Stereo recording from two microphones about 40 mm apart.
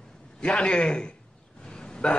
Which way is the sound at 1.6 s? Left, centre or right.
Centre.